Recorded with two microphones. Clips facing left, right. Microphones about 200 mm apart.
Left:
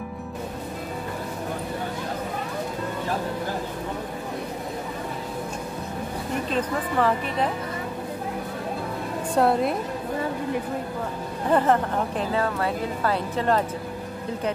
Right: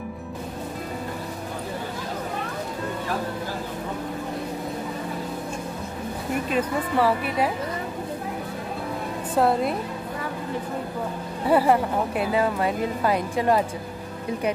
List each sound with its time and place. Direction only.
6.5 s speech: 10° right (ahead or behind)
9.3 s a woman's voice: centre (ahead or behind)
11.4 s speech: 10° right (ahead or behind)